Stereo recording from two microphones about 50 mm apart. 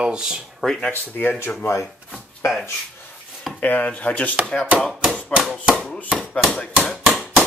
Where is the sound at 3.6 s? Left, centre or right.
Left.